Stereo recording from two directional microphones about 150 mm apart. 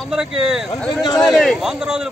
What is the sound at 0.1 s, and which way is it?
Speech, 5° right (ahead or behind).